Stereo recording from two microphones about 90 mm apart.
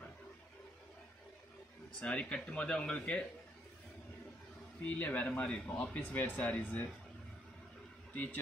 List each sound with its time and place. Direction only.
2.0 s speech: 10° left (ahead or behind)
4.8 s speech: 20° left (ahead or behind)
8.1 s a man's voice: 20° left (ahead or behind)